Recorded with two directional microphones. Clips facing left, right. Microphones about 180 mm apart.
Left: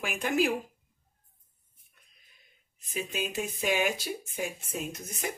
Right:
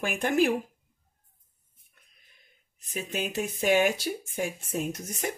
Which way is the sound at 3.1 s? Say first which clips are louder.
Right 4 dB; 50° right (ahead or behind).